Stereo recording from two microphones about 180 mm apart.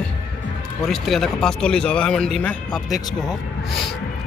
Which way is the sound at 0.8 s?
Centre (ahead or behind).